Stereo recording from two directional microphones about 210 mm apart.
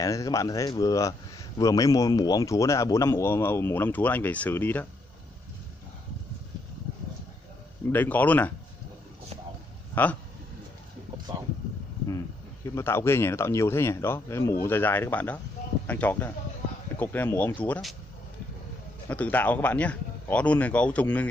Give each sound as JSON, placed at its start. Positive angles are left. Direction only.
{"t": 0.0, "sound": "speech", "side_deg": 15}
{"t": 7.9, "sound": "speech", "side_deg": 10}
{"t": 12.7, "sound": "speech", "side_deg": 10}
{"t": 19.0, "sound": "speech", "side_deg": 10}